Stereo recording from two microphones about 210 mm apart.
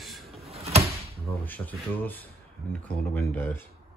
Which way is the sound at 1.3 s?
10° left (ahead or behind).